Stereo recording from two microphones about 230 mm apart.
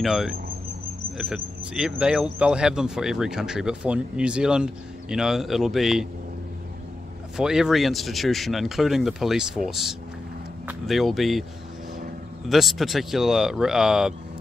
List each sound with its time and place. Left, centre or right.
0.0 s speech: centre
7.3 s speech: centre
12.4 s speech: centre